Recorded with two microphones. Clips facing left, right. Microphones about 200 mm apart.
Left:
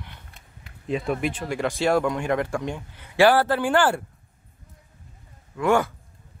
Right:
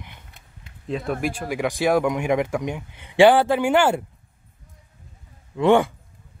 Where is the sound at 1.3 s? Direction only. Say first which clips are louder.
Right 1 dB; 10° right (ahead or behind).